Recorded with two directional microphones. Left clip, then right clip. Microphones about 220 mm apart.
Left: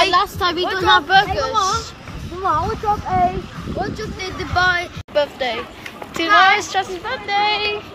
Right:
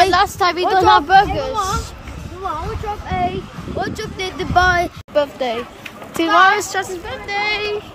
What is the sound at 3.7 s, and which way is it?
Speech, 10° right (ahead or behind).